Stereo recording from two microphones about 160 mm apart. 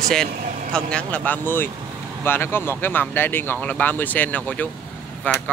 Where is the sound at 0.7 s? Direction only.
10° left (ahead or behind).